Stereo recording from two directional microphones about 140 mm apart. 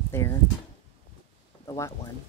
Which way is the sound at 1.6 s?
25° left (ahead or behind).